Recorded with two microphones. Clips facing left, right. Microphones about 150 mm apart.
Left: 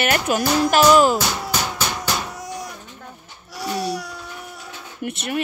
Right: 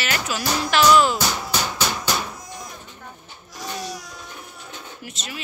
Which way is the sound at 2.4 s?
70° left (ahead or behind).